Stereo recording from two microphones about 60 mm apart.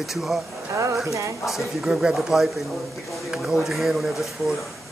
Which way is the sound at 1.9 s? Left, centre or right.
Centre.